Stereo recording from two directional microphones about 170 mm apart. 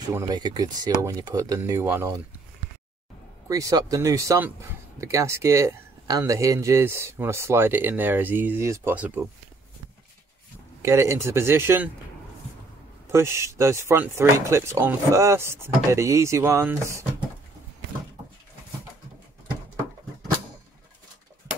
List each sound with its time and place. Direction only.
0.3 s speech: 25° right (ahead or behind)
3.4 s speech: 20° right (ahead or behind)
10.8 s speech: 15° right (ahead or behind)
13.1 s speech: 15° right (ahead or behind)